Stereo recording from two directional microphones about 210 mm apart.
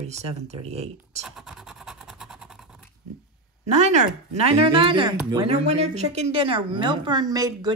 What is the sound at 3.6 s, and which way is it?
A woman's voice, 30° right (ahead or behind).